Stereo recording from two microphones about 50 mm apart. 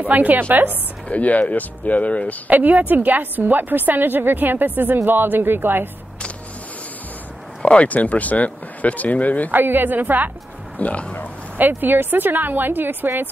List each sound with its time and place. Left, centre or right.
0.0 s a woman's voice: right
1.0 s speech: left
2.4 s a woman's voice: right
7.6 s speech: left
9.5 s a woman's voice: right
10.8 s speech: left
11.5 s a woman's voice: right